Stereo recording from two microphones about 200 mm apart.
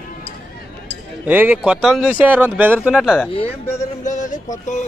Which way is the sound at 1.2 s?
10° right (ahead or behind).